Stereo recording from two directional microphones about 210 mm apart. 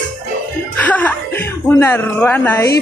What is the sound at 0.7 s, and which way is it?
Speech, 5° left (ahead or behind).